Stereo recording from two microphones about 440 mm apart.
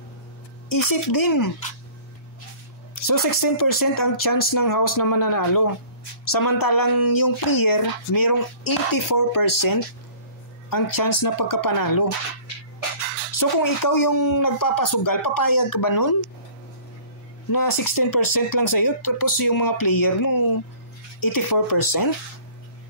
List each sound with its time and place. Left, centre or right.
0.7 s speech: left
3.0 s speech: left
13.4 s speech: left
17.5 s speech: left